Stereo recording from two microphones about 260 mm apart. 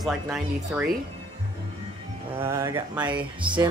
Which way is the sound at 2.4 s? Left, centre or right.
Centre.